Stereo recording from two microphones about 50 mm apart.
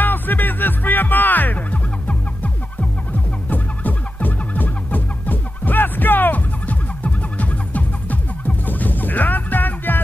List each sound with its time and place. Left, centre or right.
0.0 s music: left